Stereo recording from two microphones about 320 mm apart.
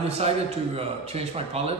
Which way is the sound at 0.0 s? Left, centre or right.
Centre.